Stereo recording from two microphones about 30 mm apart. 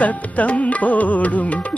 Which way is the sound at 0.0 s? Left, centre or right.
Left.